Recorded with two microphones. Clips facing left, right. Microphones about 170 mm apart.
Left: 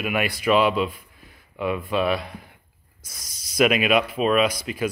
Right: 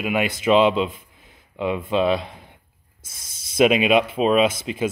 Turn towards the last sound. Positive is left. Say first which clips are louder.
# right 2 dB
turn(degrees=-25)  # may be behind; listen again after turning